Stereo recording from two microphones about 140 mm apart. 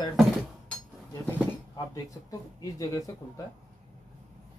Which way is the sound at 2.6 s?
25° left (ahead or behind).